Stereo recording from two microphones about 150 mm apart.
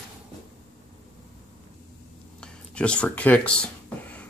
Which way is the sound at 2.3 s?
5° left (ahead or behind).